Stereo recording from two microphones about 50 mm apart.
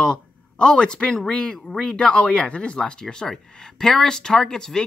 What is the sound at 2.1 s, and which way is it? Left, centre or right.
Speech, centre.